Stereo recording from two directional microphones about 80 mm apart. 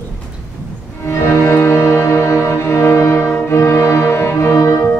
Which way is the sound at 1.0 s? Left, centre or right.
Left.